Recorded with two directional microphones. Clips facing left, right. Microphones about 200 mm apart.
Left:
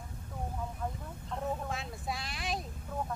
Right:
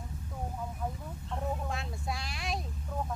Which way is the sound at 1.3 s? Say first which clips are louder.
Even; centre (ahead or behind).